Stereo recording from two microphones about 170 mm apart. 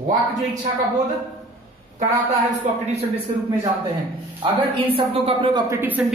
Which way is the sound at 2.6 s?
45° right (ahead or behind).